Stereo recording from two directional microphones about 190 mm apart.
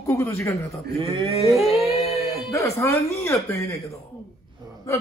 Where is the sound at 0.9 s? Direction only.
30° right (ahead or behind).